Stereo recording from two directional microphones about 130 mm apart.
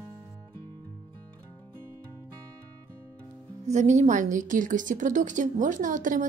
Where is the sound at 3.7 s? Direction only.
65° right (ahead or behind); by 6.3 s 85° right.